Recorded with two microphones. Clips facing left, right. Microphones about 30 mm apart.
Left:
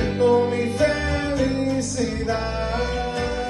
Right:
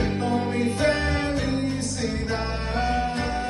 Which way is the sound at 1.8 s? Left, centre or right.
Right.